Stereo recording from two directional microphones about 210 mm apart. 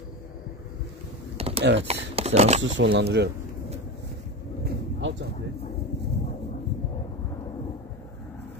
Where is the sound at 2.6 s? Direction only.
60° right (ahead or behind).